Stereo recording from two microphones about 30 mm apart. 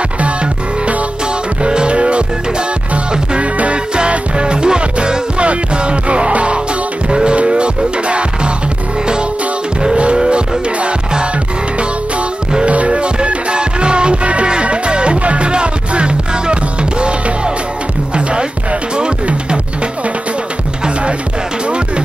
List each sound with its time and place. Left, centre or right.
1.6 s music: right
3.3 s music: right
4.4 s music: right
5.4 s music: right
10.1 s music: right
12.6 s music: right
14.2 s music: right
14.5 s music: right
18.1 s music: right
21.6 s music: right